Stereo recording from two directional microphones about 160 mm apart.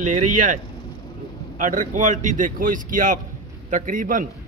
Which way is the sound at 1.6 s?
55° right (ahead or behind).